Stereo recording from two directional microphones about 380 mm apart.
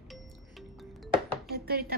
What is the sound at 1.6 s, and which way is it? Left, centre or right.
Chopping, right.